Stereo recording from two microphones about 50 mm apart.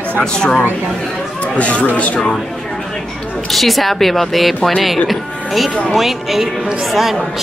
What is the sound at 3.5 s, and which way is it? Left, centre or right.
Speech, centre.